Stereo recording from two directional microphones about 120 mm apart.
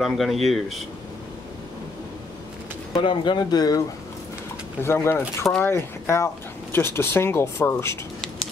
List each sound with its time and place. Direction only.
0.0 s speech: centre (ahead or behind)
3.0 s speech: 40° left (ahead or behind)
4.8 s speech: 20° left (ahead or behind)